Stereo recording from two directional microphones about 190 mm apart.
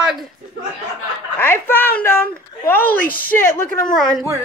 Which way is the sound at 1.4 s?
10° left (ahead or behind).